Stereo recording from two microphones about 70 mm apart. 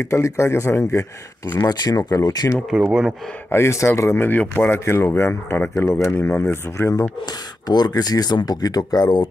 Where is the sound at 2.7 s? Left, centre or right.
Centre.